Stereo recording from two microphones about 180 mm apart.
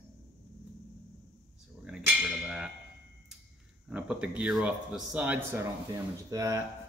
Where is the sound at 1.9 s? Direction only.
5° right (ahead or behind).